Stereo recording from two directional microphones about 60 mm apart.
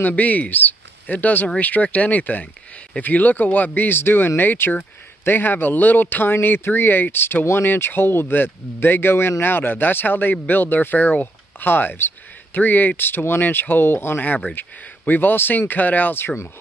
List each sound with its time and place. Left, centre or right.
0.0 s a man's voice: left